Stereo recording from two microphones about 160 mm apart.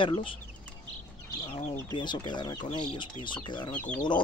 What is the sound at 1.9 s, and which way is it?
Speech, 30° left (ahead or behind).